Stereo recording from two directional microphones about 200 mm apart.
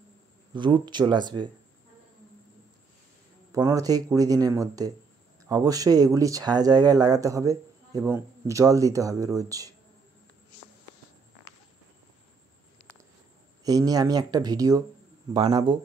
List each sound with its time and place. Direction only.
0.6 s speech: 25° right (ahead or behind)
3.5 s speech: 15° right (ahead or behind)
13.7 s speech: 20° right (ahead or behind)